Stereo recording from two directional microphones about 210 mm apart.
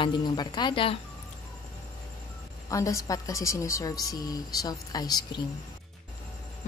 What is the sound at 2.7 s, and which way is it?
A woman's voice, 15° left (ahead or behind).